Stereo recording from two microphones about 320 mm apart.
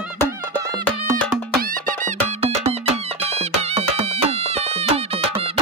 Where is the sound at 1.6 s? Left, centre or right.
Right.